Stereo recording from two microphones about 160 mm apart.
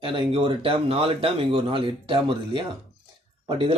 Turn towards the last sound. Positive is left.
turn(degrees=-35)  # may be behind; listen again after turning